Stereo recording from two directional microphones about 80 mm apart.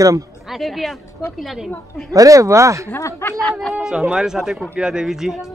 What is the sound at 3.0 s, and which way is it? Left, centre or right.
Speech, left.